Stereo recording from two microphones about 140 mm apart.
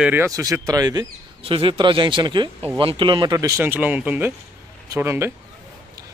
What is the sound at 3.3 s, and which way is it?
Speech, 20° right (ahead or behind).